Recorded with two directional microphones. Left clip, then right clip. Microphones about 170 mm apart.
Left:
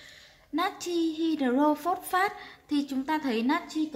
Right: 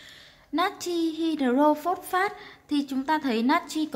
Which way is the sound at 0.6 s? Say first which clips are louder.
Right 2 dB; 15° right (ahead or behind).